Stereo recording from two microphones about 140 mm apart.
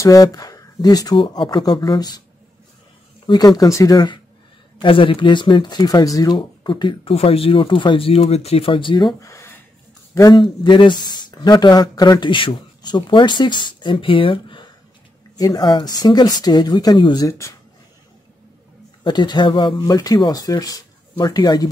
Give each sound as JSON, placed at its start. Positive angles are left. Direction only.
{"t": 0.0, "sound": "speech", "side_deg": 25}
{"t": 3.3, "sound": "speech", "side_deg": 30}
{"t": 10.3, "sound": "speech", "side_deg": 35}
{"t": 19.0, "sound": "speech", "side_deg": 30}